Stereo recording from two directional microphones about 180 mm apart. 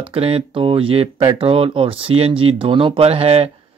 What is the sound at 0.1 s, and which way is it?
Speech, 30° right (ahead or behind).